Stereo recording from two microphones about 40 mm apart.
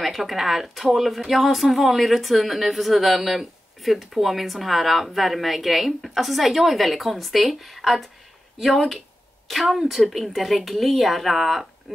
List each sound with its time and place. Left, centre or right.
0.0 s speech: centre